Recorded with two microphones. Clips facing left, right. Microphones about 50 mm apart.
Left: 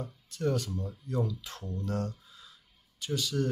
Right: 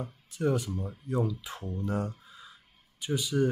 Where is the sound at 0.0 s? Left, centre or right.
Centre.